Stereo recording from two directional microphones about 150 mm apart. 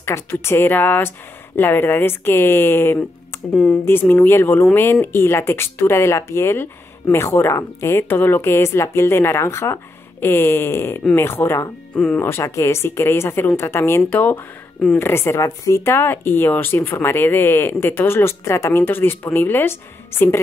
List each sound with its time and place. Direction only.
0.0 s speech: 15° left (ahead or behind)